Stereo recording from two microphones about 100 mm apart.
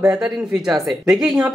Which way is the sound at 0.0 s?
5° right (ahead or behind).